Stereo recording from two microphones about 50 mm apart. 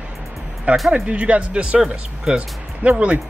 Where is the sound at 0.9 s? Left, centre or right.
Right.